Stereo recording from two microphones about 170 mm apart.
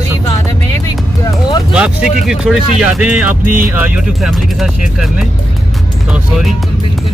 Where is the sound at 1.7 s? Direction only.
5° right (ahead or behind).